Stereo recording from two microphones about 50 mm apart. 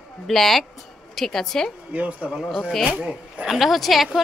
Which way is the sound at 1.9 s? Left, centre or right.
Right.